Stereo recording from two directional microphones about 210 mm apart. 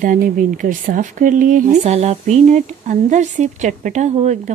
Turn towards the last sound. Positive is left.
turn(degrees=-35)  # may be behind; listen again after turning